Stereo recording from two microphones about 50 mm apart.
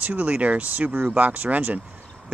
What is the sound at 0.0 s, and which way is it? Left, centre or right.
Speech, right.